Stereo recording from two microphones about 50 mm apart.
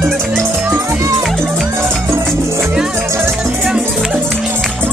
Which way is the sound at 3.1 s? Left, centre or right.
Right.